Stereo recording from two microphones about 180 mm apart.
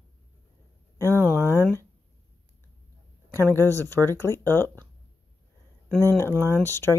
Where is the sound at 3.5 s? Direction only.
15° left (ahead or behind).